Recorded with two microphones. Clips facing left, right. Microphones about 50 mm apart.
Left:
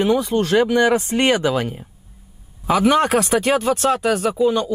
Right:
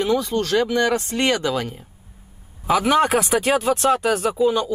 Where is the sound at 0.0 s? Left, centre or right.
Centre.